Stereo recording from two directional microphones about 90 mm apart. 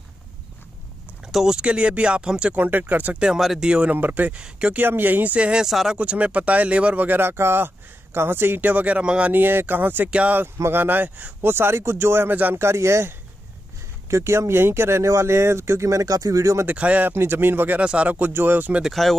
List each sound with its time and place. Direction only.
1.3 s speech: 5° right (ahead or behind)
5.9 s speech: 15° right (ahead or behind)
9.3 s speech: 25° right (ahead or behind)
16.6 s speech: 15° right (ahead or behind)
17.1 s speech: 25° right (ahead or behind)
18.8 s speech: centre (ahead or behind)